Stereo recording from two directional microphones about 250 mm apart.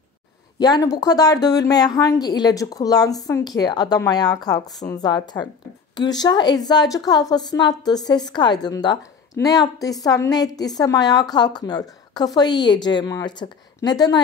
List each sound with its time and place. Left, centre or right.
0.6 s a woman's voice: centre